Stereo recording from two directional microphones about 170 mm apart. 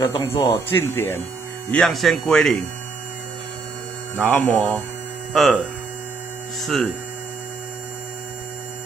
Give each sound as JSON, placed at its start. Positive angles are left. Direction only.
{"t": 0.0, "sound": "speech", "side_deg": 25}
{"t": 0.7, "sound": "speech", "side_deg": 10}
{"t": 1.7, "sound": "speech", "side_deg": 0}
{"t": 4.3, "sound": "speech", "side_deg": 5}
{"t": 5.3, "sound": "hum", "side_deg": 0}
{"t": 6.6, "sound": "speech", "side_deg": 0}